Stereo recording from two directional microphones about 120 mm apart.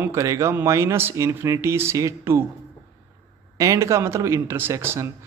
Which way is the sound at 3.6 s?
25° right (ahead or behind).